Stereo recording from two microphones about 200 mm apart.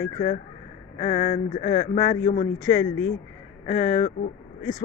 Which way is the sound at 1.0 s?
35° left (ahead or behind).